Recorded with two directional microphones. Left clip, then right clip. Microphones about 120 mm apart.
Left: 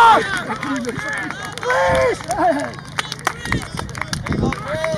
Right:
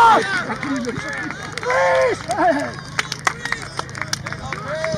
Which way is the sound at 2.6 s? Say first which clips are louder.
Right 1 dB; 30° left (ahead or behind).